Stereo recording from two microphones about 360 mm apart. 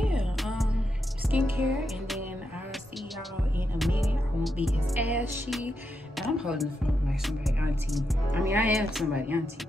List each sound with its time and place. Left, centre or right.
0.0 s music: centre
3.5 s music: centre
6.1 s speech: centre